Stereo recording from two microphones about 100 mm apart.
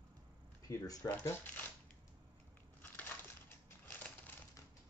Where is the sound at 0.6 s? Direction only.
35° left (ahead or behind).